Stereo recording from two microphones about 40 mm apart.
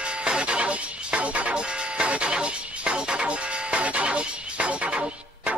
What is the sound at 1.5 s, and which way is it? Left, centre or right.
Music, right.